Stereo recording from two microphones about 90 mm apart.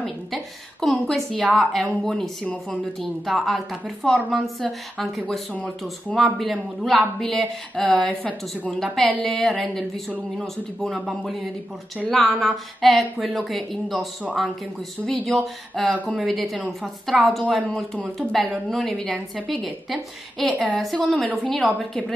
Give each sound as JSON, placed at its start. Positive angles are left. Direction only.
{"t": 0.0, "sound": "a woman's voice", "side_deg": 0}
{"t": 2.4, "sound": "a woman's voice", "side_deg": 15}
{"t": 3.3, "sound": "a woman's voice", "side_deg": 0}
{"t": 15.0, "sound": "a woman's voice", "side_deg": 0}
{"t": 18.3, "sound": "a woman's voice", "side_deg": 0}